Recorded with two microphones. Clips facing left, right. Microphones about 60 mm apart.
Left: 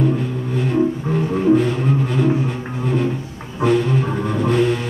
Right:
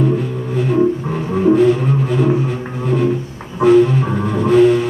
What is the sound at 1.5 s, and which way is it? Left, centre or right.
Music, centre.